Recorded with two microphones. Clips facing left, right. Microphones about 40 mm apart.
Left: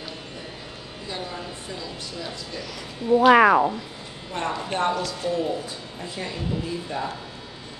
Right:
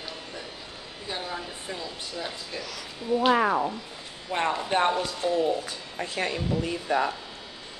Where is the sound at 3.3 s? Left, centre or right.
Left.